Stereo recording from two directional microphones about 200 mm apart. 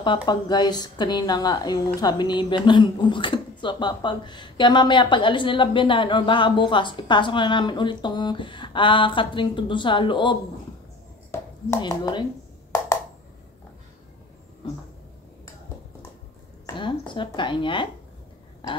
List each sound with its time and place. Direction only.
0.0 s a woman's voice: 25° left (ahead or behind)
11.3 s speech: 15° left (ahead or behind)
16.6 s speech: 25° left (ahead or behind)